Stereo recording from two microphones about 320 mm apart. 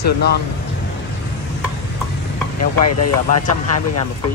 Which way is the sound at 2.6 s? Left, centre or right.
Left.